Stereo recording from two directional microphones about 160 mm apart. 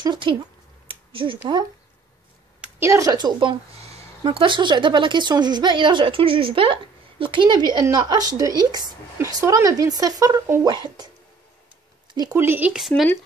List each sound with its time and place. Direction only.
0.0 s speech: 30° right (ahead or behind)
0.8 s a sound: 35° right (ahead or behind)
2.6 s speech: 15° right (ahead or behind)
12.1 s speech: 25° right (ahead or behind)
12.4 s speech: 15° right (ahead or behind)